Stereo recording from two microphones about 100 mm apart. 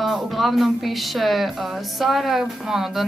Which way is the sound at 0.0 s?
Centre (ahead or behind).